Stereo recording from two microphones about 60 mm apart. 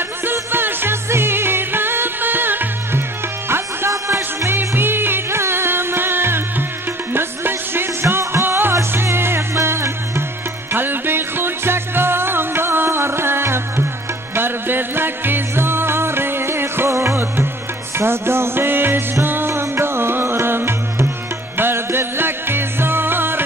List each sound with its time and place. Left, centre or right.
0.2 s music: right
3.9 s music: right
4.5 s music: right